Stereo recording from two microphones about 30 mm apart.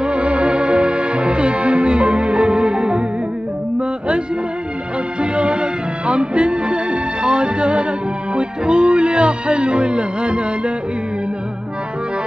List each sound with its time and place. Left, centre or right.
0.0 s music: right
5.2 s music: right